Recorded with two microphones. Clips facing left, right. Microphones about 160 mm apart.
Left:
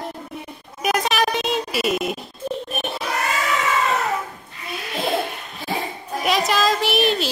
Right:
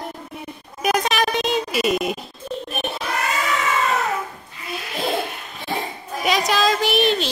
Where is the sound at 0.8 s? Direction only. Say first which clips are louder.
Even; centre (ahead or behind).